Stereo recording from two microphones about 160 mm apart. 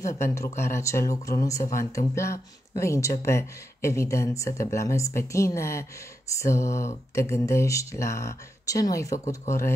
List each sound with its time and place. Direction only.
0.0 s speech: 20° left (ahead or behind)